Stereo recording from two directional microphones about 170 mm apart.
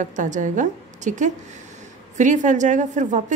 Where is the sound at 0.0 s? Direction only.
45° right (ahead or behind).